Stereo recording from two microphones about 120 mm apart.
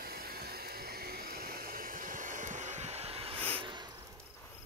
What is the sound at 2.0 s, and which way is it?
Vehicle, 90° right.